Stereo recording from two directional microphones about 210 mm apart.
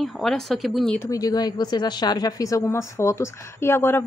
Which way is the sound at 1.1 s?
15° left (ahead or behind).